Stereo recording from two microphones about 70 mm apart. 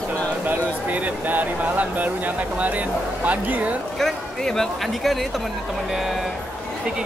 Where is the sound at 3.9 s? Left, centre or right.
Centre.